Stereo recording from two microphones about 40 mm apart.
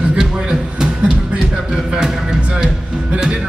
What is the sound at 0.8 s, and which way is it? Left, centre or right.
Music, right.